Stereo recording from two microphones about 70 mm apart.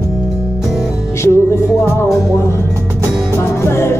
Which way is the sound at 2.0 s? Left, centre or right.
Left.